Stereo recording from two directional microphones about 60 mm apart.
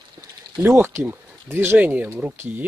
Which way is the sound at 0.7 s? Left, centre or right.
Right.